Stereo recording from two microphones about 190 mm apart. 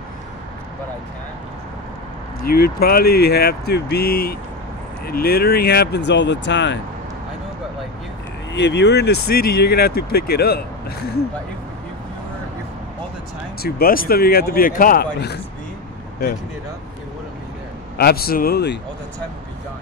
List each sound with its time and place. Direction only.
2.4 s speech: 55° left (ahead or behind); by 6.8 s 70° left (ahead or behind)
8.5 s speech: 65° left (ahead or behind)
13.6 s speech: 55° left (ahead or behind)
17.9 s speech: 55° left (ahead or behind)